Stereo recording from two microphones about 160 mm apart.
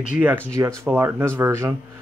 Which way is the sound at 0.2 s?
10° right (ahead or behind).